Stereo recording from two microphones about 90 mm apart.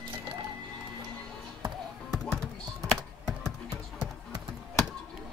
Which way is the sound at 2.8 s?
5° left (ahead or behind).